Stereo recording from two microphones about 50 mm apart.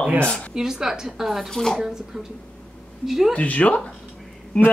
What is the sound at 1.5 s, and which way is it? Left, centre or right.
Speech, centre.